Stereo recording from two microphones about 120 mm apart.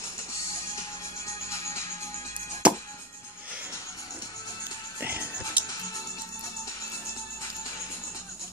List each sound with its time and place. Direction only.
1.2 s music: 25° left (ahead or behind)
2.6 s music: 10° right (ahead or behind)
5.0 s music: 15° right (ahead or behind)